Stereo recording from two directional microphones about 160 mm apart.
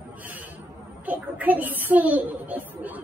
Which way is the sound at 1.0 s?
10° right (ahead or behind).